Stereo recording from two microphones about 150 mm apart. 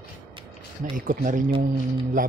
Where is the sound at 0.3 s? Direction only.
35° right (ahead or behind).